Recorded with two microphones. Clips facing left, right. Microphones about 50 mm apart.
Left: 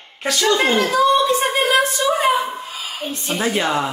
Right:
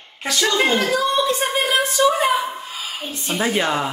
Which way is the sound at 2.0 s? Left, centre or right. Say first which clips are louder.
Right 3 dB; centre.